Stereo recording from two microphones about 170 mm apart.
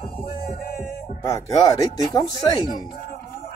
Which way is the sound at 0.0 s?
60° left (ahead or behind).